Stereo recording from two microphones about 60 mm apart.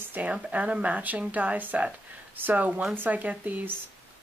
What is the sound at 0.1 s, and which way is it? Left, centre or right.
Speech, right.